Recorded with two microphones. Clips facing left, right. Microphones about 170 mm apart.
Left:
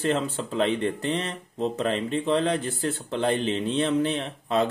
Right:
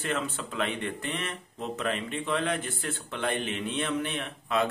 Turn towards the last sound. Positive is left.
turn(degrees=30)  # may be behind; listen again after turning